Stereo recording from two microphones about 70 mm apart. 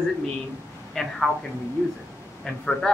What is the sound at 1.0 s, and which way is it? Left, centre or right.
Speech, centre.